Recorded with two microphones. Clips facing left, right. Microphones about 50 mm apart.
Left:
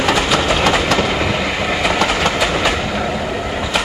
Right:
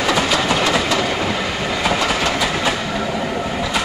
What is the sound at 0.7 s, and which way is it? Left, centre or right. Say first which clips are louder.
Train: left 3 dB; left.